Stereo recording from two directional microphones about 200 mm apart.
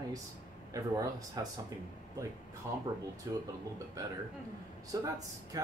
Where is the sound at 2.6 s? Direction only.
15° right (ahead or behind).